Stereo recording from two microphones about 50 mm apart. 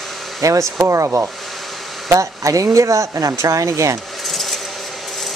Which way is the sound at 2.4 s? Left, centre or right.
Right.